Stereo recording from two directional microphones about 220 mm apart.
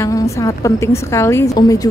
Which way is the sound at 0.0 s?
15° left (ahead or behind).